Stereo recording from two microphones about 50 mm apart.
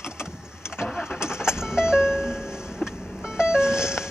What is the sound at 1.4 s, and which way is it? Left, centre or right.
Vehicle, centre.